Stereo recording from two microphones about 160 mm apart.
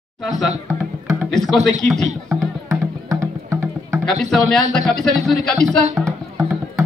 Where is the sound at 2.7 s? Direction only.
20° right (ahead or behind).